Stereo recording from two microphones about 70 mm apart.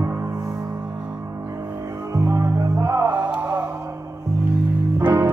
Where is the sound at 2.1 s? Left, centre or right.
Right.